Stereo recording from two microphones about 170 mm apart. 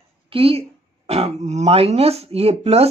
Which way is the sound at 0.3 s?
35° right (ahead or behind).